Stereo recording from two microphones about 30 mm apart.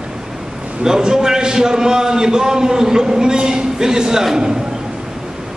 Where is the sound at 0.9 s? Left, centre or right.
Right.